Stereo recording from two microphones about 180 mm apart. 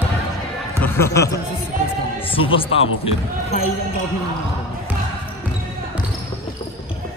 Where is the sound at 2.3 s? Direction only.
30° left (ahead or behind).